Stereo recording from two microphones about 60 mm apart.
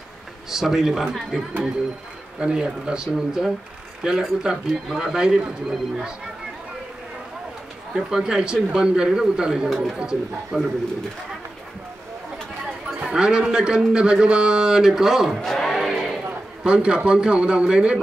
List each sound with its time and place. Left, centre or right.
0.5 s speech: centre
2.4 s speech: centre
7.9 s speech: centre
9.9 s speech: centre
13.0 s speech: centre
16.6 s speech: centre